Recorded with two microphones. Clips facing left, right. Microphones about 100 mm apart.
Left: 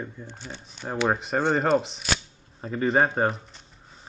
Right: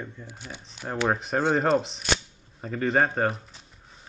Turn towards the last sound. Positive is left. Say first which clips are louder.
# left 1 dB
turn(degrees=0)  # may be behind; listen again after turning